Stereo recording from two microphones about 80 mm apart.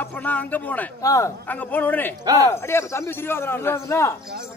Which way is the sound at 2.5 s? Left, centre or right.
Left.